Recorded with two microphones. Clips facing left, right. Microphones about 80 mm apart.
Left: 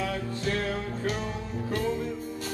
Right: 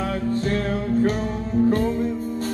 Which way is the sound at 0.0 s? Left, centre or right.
Right.